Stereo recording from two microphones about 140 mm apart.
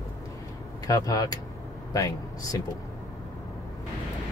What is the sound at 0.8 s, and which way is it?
Speech, 25° left (ahead or behind).